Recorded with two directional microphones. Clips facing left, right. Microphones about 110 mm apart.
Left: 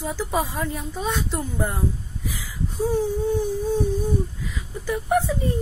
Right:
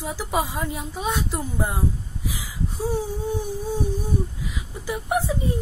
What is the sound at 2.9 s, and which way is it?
Speech, 15° right (ahead or behind).